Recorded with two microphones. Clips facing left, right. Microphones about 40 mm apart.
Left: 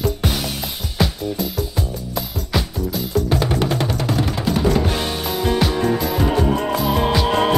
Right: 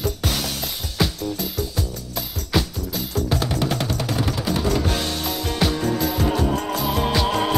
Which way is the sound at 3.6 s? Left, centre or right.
Centre.